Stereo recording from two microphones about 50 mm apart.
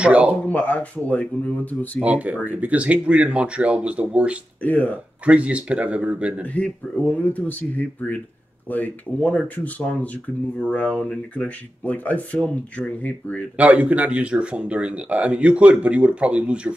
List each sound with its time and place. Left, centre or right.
0.0 s speech: right
0.5 s speech: left
2.0 s speech: right
4.6 s speech: left
5.2 s speech: right
6.4 s speech: left
13.6 s speech: right